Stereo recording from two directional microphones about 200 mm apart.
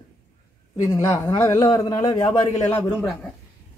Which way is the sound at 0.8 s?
15° left (ahead or behind).